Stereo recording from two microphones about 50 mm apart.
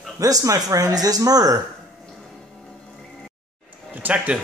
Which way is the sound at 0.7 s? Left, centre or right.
Right.